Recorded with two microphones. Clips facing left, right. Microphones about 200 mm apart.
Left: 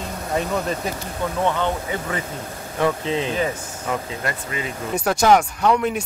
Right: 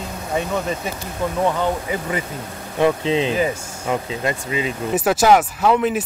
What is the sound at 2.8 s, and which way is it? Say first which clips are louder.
Speech: right 4 dB; 20° right (ahead or behind).